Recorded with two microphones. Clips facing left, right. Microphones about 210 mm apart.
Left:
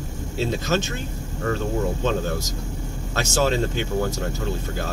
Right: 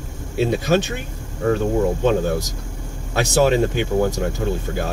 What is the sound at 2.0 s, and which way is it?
Speech, 15° right (ahead or behind).